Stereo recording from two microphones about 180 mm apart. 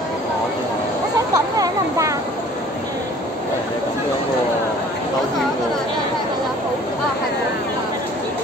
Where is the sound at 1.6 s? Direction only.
20° right (ahead or behind).